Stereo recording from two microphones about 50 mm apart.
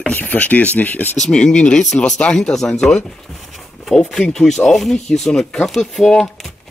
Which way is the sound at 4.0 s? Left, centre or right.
Centre.